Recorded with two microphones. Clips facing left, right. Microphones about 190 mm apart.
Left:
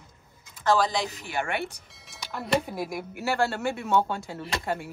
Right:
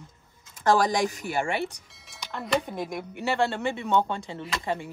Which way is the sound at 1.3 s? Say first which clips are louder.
Right 1 dB; 30° right (ahead or behind).